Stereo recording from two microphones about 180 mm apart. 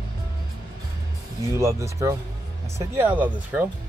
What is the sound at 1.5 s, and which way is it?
Speech, 15° right (ahead or behind).